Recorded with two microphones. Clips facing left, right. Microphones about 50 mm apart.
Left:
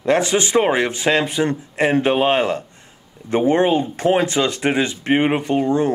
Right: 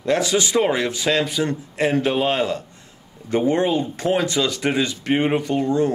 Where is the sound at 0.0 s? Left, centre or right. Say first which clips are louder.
Left 2 dB; left.